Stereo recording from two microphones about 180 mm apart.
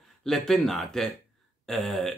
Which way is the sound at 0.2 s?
Centre (ahead or behind).